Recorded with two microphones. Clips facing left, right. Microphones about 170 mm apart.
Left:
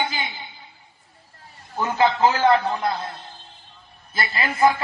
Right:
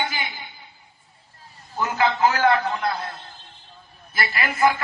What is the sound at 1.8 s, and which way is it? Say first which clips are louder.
A man's voice: left 2 dB; 25° left (ahead or behind).